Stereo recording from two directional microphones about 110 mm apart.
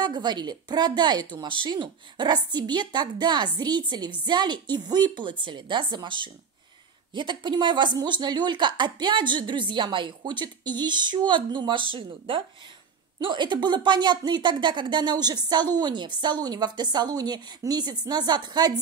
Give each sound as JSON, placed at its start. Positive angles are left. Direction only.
{"t": 0.0, "sound": "a woman's voice", "side_deg": -40}